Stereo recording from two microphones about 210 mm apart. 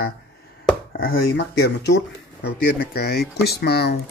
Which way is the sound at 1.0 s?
50° left (ahead or behind).